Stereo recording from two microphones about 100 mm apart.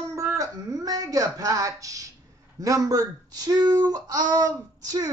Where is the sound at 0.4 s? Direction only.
40° right (ahead or behind).